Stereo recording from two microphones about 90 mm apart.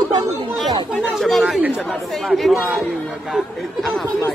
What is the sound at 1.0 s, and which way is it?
A woman's voice, centre (ahead or behind).